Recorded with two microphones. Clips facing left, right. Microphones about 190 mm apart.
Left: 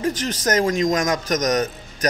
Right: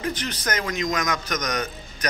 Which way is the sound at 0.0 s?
45° left (ahead or behind).